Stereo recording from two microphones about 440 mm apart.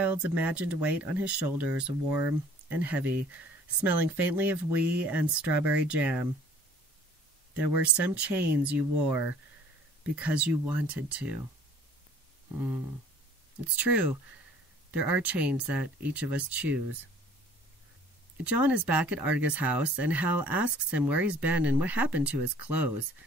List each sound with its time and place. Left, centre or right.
0.0 s speech: centre
7.5 s speech: centre
12.5 s speech: centre
18.4 s speech: centre
20.2 s speech: right
20.6 s speech: centre